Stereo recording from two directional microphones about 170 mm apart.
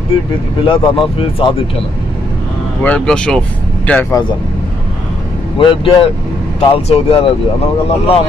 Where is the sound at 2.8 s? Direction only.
5° left (ahead or behind).